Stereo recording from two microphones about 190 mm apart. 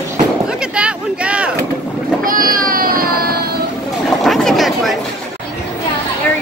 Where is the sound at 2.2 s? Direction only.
45° right (ahead or behind).